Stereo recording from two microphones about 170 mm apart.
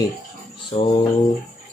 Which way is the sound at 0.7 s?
35° left (ahead or behind).